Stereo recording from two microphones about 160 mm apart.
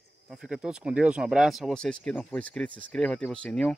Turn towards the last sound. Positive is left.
turn(degrees=5)  # may be behind; listen again after turning